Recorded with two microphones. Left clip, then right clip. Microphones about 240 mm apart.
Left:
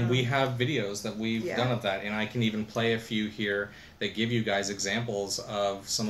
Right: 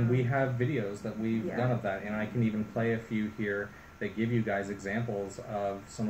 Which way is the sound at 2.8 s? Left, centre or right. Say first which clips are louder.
Left 4 dB; centre.